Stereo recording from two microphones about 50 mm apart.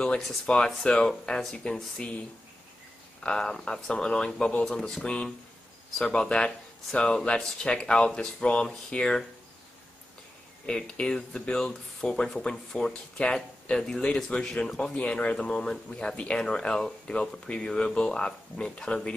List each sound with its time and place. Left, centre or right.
0.5 s speech: left
3.3 s speech: centre
4.6 s speech: centre
10.7 s speech: centre